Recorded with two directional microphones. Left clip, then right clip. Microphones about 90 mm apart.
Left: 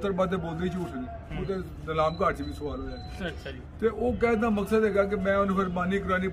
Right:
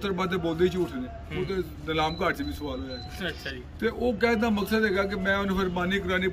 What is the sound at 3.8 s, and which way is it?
A man's voice, 30° left (ahead or behind).